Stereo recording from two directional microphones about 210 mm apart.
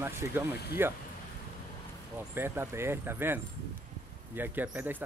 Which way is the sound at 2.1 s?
10° right (ahead or behind).